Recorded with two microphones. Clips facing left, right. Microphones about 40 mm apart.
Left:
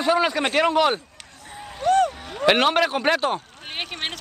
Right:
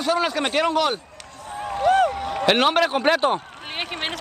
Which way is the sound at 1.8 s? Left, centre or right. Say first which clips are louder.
Right 1 dB; centre.